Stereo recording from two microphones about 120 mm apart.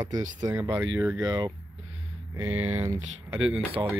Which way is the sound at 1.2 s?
35° right (ahead or behind).